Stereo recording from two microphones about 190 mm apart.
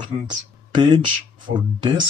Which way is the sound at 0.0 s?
25° right (ahead or behind).